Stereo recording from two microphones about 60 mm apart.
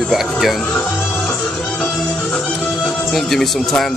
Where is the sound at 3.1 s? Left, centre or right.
Centre.